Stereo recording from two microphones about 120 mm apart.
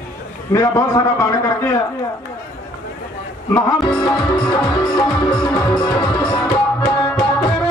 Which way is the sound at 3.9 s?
40° left (ahead or behind).